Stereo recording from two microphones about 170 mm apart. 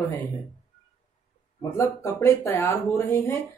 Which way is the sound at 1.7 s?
15° left (ahead or behind).